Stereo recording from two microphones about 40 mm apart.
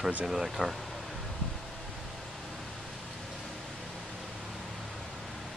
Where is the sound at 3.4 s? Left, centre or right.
Centre.